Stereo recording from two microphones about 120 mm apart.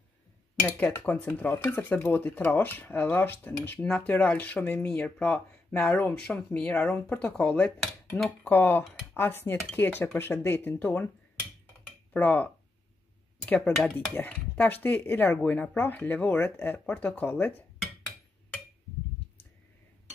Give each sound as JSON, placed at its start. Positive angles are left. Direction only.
{"t": 0.7, "sound": "speech", "side_deg": 15}
{"t": 9.1, "sound": "dishes", "side_deg": 20}
{"t": 9.8, "sound": "speech", "side_deg": 20}
{"t": 12.1, "sound": "speech", "side_deg": 15}
{"t": 13.5, "sound": "speech", "side_deg": 15}